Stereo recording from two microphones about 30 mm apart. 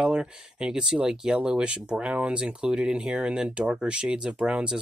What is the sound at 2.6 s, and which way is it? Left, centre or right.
Speech, right.